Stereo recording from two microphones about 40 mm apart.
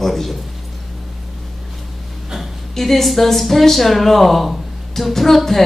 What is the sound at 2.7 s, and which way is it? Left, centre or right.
A man's voice, centre.